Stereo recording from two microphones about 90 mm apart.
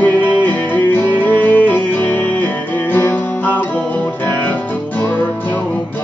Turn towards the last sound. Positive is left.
turn(degrees=20)  # may be behind; listen again after turning